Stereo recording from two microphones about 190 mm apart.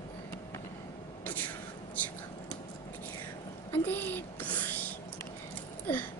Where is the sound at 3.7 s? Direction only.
10° left (ahead or behind).